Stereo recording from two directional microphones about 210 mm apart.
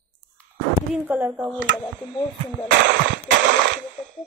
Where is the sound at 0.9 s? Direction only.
10° right (ahead or behind).